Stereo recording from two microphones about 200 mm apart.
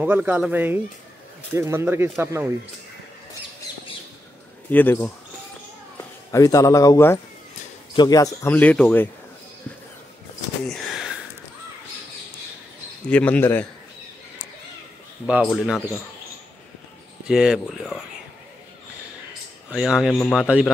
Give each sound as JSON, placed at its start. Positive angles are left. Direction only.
{"t": 0.0, "sound": "speech", "side_deg": -10}
{"t": 4.6, "sound": "speech", "side_deg": 10}
{"t": 6.3, "sound": "speech", "side_deg": 15}
{"t": 10.7, "sound": "a sound", "side_deg": -5}
{"t": 13.1, "sound": "speech", "side_deg": 5}
{"t": 15.4, "sound": "a man's voice", "side_deg": 0}
{"t": 17.3, "sound": "a man's voice", "side_deg": -5}
{"t": 19.7, "sound": "a man's voice", "side_deg": -5}